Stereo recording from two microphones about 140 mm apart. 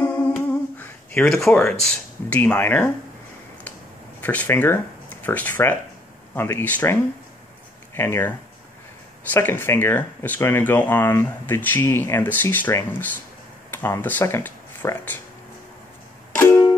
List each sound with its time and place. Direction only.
0.0 s humming: 10° left (ahead or behind)
4.2 s speech: 10° left (ahead or behind)